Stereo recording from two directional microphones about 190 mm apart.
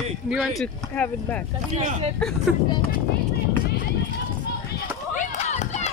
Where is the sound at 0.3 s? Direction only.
Centre (ahead or behind).